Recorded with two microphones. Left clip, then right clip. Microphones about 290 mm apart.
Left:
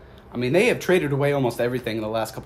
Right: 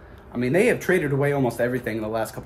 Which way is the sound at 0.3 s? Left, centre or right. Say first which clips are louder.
Even; centre.